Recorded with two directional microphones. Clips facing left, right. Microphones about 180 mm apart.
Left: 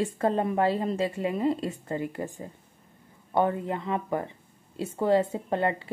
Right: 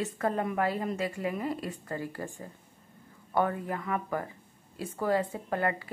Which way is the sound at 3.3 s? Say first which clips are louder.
Left 3 dB; 25° left (ahead or behind).